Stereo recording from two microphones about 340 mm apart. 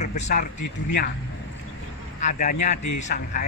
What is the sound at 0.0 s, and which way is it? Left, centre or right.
Speech, left.